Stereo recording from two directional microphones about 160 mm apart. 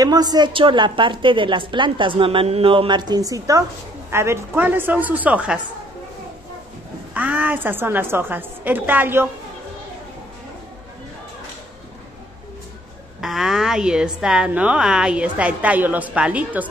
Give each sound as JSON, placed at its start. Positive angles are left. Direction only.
{"t": 0.0, "sound": "a woman's voice", "side_deg": -25}
{"t": 7.2, "sound": "a woman's voice", "side_deg": -10}
{"t": 13.2, "sound": "a woman's voice", "side_deg": 0}